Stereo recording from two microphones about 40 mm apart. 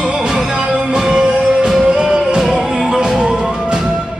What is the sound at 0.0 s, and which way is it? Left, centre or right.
Music, centre.